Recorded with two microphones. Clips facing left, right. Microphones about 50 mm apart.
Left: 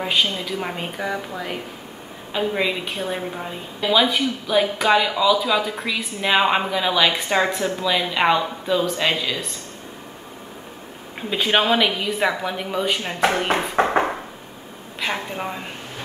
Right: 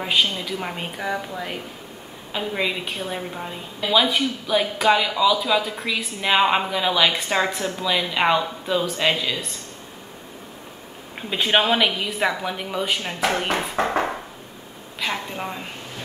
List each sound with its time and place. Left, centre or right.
0.0 s a woman's voice: centre
2.3 s a woman's voice: centre
11.1 s a woman's voice: centre
13.8 s a sound: left
15.0 s a woman's voice: centre